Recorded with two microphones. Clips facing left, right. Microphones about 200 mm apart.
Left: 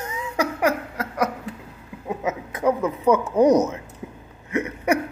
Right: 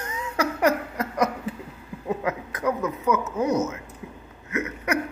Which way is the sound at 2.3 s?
25° left (ahead or behind).